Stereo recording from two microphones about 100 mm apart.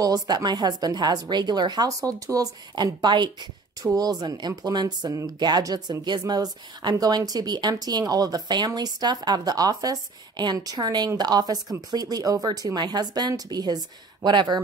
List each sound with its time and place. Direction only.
0.0 s a woman's voice: 40° right (ahead or behind)